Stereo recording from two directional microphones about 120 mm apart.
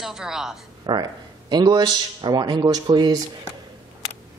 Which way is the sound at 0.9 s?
40° right (ahead or behind).